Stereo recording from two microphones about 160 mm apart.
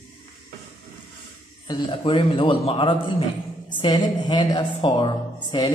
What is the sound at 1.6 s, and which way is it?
A man's voice, 30° left (ahead or behind).